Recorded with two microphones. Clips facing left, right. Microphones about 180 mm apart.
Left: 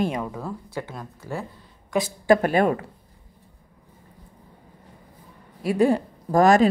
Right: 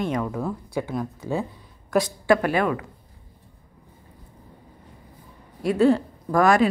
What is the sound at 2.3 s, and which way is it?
Speech, 40° left (ahead or behind).